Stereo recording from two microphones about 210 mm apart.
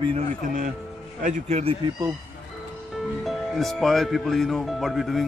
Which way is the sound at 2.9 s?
Centre (ahead or behind).